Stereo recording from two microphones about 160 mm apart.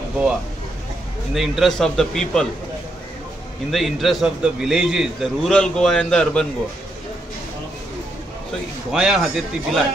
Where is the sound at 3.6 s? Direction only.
Centre (ahead or behind).